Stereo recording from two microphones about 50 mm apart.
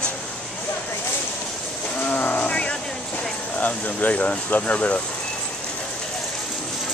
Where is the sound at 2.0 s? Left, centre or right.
Left.